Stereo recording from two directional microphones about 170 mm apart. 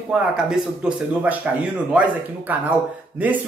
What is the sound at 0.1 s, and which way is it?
Speech, 5° right (ahead or behind).